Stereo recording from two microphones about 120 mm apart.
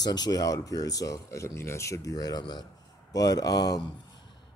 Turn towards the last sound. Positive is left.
turn(degrees=30)  # may be behind; listen again after turning